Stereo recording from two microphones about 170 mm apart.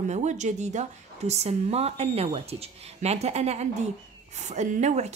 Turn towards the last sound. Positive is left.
turn(degrees=-40)  # may be behind; listen again after turning